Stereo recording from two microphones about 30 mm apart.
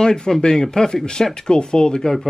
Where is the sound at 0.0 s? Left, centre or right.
Left.